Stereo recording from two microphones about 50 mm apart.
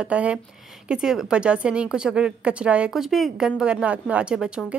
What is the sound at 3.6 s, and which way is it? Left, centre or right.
A woman's voice, centre.